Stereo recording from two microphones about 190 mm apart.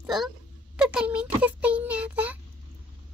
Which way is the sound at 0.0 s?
Centre (ahead or behind).